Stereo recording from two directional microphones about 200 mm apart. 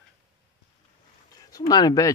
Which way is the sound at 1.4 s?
20° left (ahead or behind).